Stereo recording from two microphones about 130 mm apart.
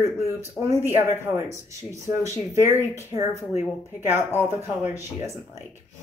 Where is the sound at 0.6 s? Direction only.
20° right (ahead or behind).